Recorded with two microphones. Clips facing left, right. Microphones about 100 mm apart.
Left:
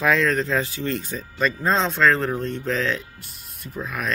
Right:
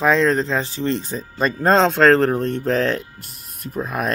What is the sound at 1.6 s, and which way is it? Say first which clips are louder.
Speech: right 7 dB; 85° right.